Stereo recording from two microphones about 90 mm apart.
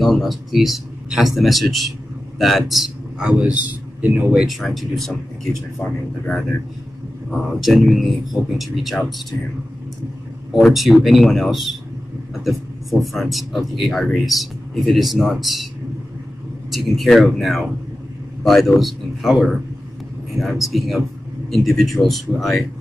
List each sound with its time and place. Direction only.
0.0 s a man's voice: centre (ahead or behind); by 4.4 s 20° right (ahead or behind)
4.4 s speech: centre (ahead or behind)
7.2 s speech: centre (ahead or behind)
10.6 s speech: centre (ahead or behind)
13.0 s speech: centre (ahead or behind)
16.7 s speech: centre (ahead or behind)